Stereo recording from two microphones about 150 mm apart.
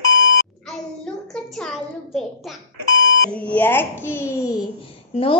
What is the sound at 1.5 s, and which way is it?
Speech, 5° left (ahead or behind).